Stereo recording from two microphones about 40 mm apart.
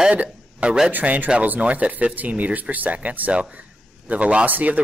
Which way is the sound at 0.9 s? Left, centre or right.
Right.